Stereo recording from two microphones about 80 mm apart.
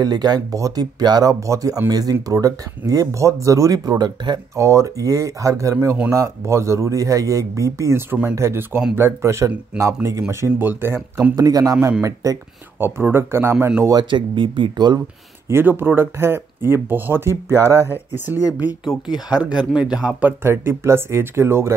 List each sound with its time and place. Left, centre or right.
0.0 s speech: right
1.4 s speech: right
4.6 s speech: right
10.6 s speech: right
11.3 s speech: right
12.7 s speech: right
14.1 s speech: right
15.4 s speech: right
19.1 s speech: centre
20.2 s speech: right